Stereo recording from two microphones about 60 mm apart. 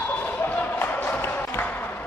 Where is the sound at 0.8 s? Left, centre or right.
Left.